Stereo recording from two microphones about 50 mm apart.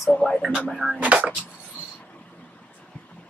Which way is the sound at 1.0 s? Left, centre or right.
Right.